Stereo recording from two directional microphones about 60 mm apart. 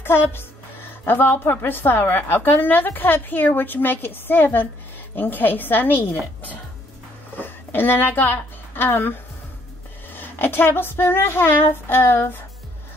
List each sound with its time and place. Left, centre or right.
0.0 s a woman's voice: left
7.3 s a woman's voice: left
10.1 s a woman's voice: left